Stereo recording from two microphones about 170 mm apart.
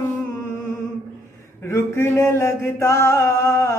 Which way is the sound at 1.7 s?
15° left (ahead or behind).